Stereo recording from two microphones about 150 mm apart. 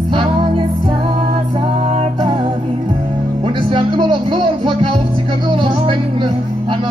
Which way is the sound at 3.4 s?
30° right (ahead or behind).